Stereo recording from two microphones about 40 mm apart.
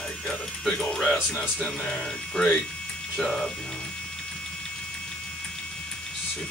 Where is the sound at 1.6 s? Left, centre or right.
Left.